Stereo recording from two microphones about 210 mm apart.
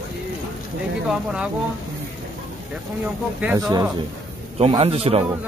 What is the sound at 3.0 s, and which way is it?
Speech, 10° right (ahead or behind).